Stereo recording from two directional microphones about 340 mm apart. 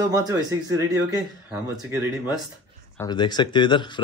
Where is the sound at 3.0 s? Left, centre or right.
Centre.